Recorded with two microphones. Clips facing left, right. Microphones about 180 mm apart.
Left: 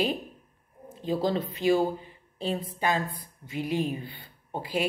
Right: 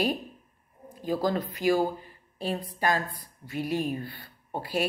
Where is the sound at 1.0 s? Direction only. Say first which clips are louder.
Even; 25° left (ahead or behind).